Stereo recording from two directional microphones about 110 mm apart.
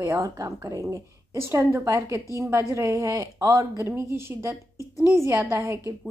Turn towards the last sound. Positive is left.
turn(degrees=-25)  # may be behind; listen again after turning